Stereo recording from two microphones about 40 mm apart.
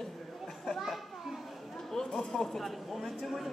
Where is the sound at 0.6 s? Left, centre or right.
Centre.